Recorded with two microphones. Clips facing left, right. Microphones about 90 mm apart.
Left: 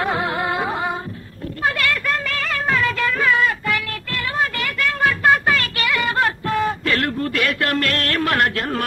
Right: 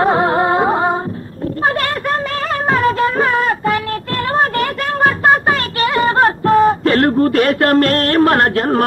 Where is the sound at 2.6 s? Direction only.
40° right (ahead or behind).